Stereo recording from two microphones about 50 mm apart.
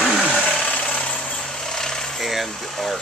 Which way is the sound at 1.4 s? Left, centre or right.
Centre.